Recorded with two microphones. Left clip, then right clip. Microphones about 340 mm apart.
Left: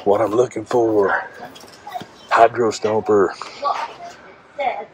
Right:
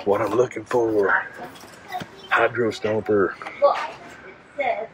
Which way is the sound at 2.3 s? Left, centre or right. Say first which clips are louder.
Left 6 dB; centre.